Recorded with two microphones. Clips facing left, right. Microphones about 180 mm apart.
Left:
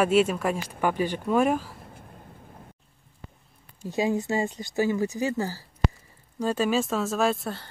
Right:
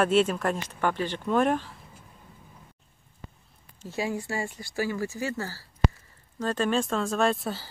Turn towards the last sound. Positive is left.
turn(degrees=0)  # may be behind; listen again after turning